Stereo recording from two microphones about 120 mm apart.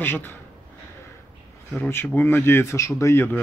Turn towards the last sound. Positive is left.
turn(degrees=20)  # may be behind; listen again after turning